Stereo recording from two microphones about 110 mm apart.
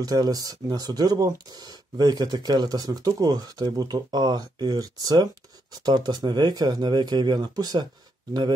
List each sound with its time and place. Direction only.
0.0 s speech: 35° right (ahead or behind)